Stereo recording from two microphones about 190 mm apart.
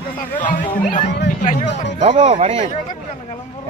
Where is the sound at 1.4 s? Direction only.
40° left (ahead or behind).